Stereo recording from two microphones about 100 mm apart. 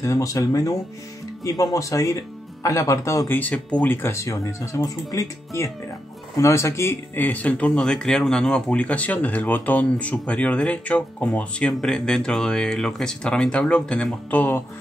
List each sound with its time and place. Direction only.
0.0 s speech: 30° left (ahead or behind)
3.3 s speech: 15° left (ahead or behind)